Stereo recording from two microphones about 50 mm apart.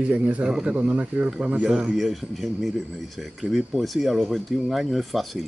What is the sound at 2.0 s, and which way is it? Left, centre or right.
Speech, centre.